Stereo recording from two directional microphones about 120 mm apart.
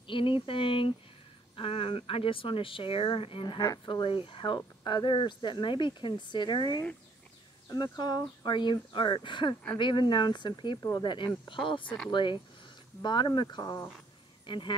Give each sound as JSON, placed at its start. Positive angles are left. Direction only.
{"t": 0.0, "sound": "a woman's voice", "side_deg": 45}
{"t": 10.8, "sound": "speech", "side_deg": 25}
{"t": 11.1, "sound": "a woman's voice", "side_deg": 40}
{"t": 14.4, "sound": "speech", "side_deg": 40}